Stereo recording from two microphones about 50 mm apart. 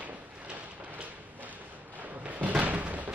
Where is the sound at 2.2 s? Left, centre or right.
Right.